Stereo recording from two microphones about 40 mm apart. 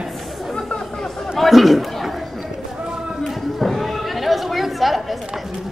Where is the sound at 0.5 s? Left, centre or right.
Left.